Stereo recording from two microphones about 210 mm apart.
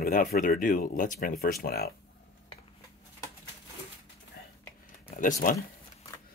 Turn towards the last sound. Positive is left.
turn(degrees=40)  # may be behind; listen again after turning